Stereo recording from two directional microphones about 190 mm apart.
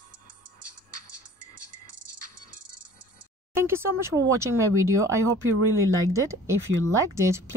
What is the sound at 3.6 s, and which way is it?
Speech, 15° right (ahead or behind).